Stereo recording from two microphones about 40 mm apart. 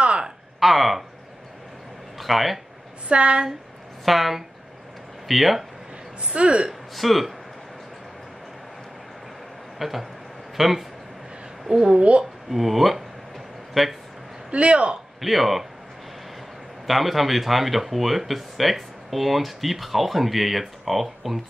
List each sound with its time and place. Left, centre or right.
0.6 s speech: centre
2.1 s speech: centre
3.1 s speech: right
4.0 s speech: centre
6.3 s speech: right
7.0 s speech: centre
9.8 s a woman's voice: centre
12.0 s speech: right
12.4 s speech: centre
14.5 s speech: right
15.1 s speech: centre
16.8 s speech: centre